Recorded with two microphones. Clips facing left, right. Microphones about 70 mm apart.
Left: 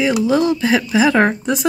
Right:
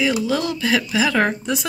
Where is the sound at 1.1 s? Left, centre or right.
Left.